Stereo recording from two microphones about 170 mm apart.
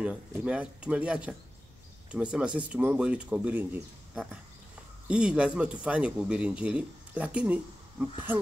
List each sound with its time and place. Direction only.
0.0 s speech: 5° right (ahead or behind)